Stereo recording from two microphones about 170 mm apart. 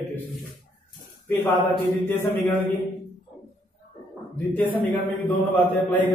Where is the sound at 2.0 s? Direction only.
15° left (ahead or behind).